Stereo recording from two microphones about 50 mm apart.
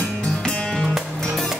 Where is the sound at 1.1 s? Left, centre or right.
Centre.